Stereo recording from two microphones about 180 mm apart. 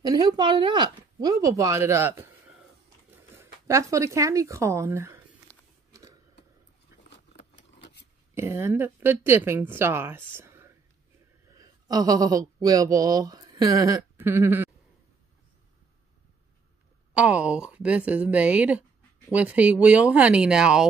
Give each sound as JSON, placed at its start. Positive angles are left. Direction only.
{"t": 0.0, "sound": "speech", "side_deg": -20}
{"t": 3.6, "sound": "a woman's voice", "side_deg": -15}
{"t": 5.5, "sound": "biting", "side_deg": -20}
{"t": 5.9, "sound": "a sound", "side_deg": -15}
{"t": 7.5, "sound": "a sound", "side_deg": 75}
{"t": 8.4, "sound": "a woman's voice", "side_deg": -15}
{"t": 17.1, "sound": "a woman's voice", "side_deg": -5}